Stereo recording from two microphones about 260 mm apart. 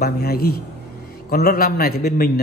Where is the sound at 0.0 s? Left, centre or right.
Left.